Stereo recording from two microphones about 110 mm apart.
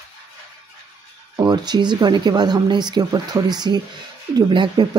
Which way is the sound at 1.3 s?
35° right (ahead or behind).